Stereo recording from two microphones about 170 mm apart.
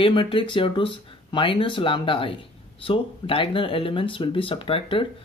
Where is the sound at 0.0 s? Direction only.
30° left (ahead or behind).